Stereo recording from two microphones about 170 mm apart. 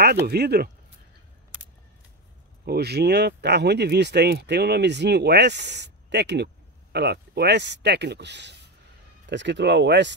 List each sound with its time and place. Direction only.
0.3 s speech: 70° right (ahead or behind)
2.6 s speech: 70° right (ahead or behind); by 10.1 s 90° right